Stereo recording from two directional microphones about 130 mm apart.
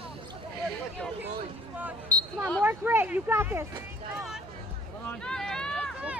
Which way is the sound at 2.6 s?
15° right (ahead or behind).